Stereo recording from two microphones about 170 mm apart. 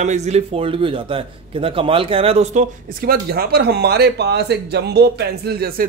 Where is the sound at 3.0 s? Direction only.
60° right (ahead or behind).